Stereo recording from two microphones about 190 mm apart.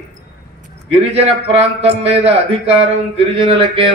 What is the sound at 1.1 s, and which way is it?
A man's voice, 30° right (ahead or behind).